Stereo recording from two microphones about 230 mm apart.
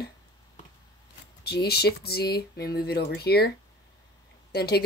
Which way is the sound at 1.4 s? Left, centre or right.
Left.